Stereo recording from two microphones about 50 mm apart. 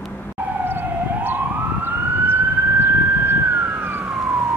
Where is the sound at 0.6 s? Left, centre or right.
Right.